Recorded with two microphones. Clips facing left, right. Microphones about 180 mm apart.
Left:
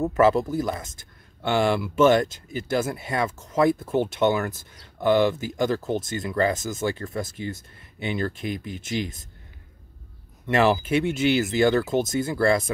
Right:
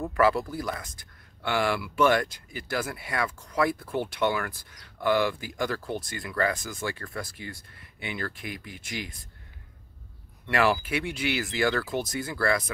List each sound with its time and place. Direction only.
0.0 s speech: 25° left (ahead or behind)
10.4 s speech: 20° left (ahead or behind)